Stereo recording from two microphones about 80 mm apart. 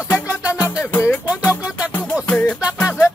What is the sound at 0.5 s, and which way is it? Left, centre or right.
Music, left.